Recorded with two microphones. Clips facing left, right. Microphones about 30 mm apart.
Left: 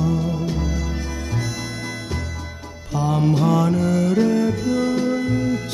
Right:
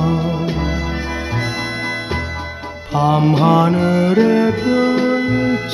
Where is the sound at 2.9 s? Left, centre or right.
Right.